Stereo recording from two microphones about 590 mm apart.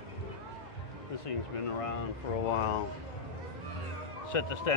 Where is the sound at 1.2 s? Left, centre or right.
Left.